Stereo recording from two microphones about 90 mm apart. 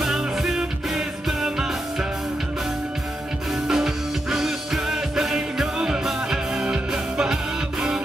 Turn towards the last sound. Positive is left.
turn(degrees=-10)  # may be behind; listen again after turning